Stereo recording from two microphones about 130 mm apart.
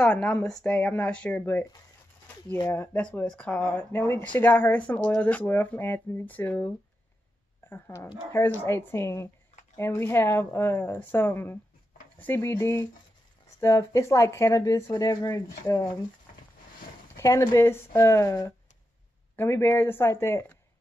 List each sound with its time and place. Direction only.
0.0 s speech: 5° left (ahead or behind)
2.7 s speech: 10° left (ahead or behind)
7.7 s speech: 20° left (ahead or behind)
16.3 s a sound: 90° left
17.2 s speech: 20° left (ahead or behind)